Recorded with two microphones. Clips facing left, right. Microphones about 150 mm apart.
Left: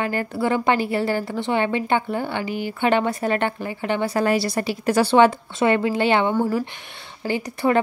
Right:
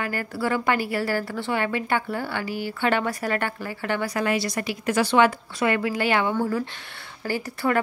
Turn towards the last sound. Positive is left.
turn(degrees=20)  # may be behind; listen again after turning